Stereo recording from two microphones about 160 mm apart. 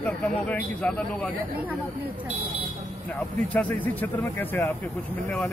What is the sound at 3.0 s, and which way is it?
Speech, 10° left (ahead or behind).